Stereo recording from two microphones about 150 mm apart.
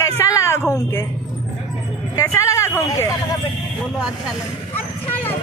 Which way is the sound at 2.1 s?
20° left (ahead or behind).